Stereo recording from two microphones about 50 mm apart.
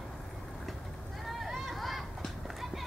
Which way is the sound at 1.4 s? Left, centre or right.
Centre.